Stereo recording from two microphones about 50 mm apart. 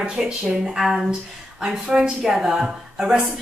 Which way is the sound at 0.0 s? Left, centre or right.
Centre.